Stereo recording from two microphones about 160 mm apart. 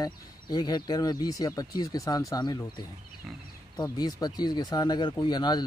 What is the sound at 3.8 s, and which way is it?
Speech, 25° left (ahead or behind).